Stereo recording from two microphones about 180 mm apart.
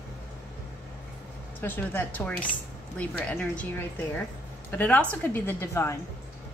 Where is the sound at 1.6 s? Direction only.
10° left (ahead or behind).